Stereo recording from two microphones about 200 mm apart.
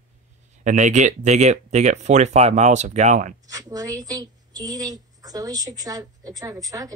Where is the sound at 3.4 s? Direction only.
15° right (ahead or behind).